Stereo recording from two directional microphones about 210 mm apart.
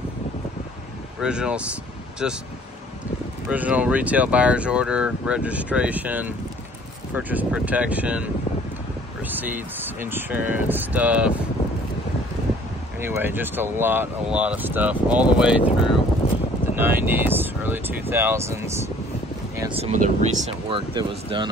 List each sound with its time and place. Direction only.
1.2 s speech: 5° right (ahead or behind)
3.4 s speech: 5° right (ahead or behind)
9.3 s speech: 10° right (ahead or behind)
13.0 s speech: 10° right (ahead or behind)
16.7 s speech: 10° right (ahead or behind)
19.7 s speech: 30° right (ahead or behind)